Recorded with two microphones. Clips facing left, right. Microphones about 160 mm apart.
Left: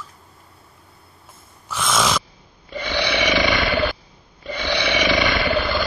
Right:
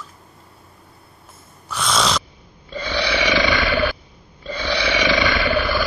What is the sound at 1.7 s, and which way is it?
Snoring, 15° left (ahead or behind).